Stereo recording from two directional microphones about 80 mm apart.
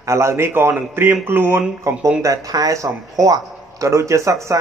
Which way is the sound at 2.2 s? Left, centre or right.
Right.